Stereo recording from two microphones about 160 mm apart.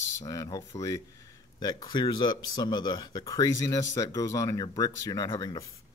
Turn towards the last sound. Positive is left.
turn(degrees=20)  # may be behind; listen again after turning